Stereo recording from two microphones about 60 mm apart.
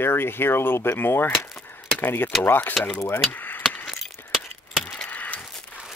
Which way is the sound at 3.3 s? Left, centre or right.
Left.